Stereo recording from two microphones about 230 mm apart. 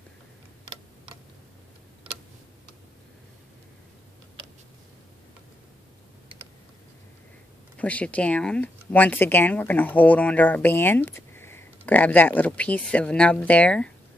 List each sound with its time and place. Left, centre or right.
7.7 s speech: centre